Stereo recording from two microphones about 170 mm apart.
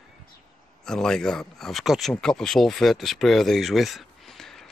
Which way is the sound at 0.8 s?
5° left (ahead or behind).